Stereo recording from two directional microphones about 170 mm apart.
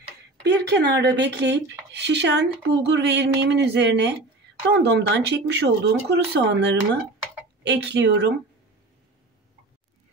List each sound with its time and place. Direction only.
0.4 s speech: 75° right (ahead or behind)